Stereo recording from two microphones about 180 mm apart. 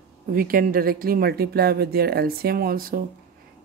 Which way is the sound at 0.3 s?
55° right (ahead or behind).